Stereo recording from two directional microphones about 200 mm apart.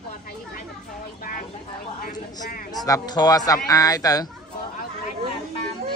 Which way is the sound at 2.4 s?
45° left (ahead or behind).